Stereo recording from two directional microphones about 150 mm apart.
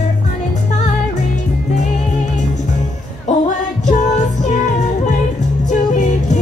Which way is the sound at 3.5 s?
50° left (ahead or behind).